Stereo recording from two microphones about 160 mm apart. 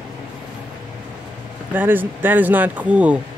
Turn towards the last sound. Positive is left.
turn(degrees=-10)  # may be behind; listen again after turning